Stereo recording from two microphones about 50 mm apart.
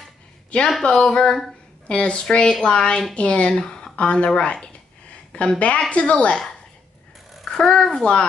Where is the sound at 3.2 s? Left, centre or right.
Left.